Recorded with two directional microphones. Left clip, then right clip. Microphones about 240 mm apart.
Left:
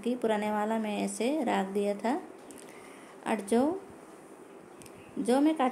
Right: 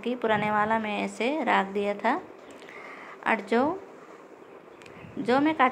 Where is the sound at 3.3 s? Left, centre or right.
Centre.